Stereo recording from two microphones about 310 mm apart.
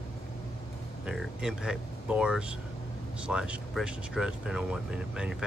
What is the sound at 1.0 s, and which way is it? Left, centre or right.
Speech, centre.